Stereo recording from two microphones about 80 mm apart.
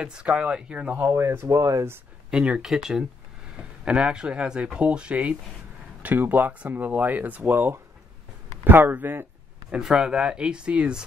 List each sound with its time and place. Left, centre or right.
0.0 s speech: centre
1.0 s speech: right
2.3 s speech: centre
9.7 s speech: centre